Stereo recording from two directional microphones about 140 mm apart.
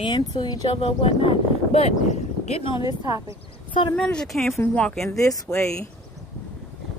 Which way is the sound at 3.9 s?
5° left (ahead or behind).